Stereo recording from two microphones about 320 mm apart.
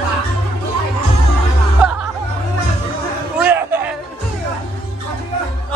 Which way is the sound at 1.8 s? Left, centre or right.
Centre.